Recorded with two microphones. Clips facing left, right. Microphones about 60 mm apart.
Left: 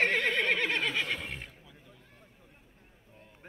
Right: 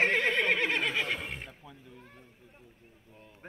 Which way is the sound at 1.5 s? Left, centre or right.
Right.